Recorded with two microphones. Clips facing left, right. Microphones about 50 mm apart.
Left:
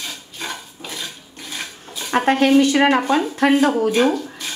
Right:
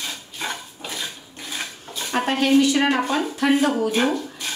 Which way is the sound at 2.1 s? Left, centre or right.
Left.